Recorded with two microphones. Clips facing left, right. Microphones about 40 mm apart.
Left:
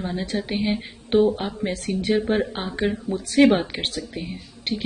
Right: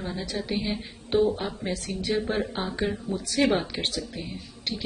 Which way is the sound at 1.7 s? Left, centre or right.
Left.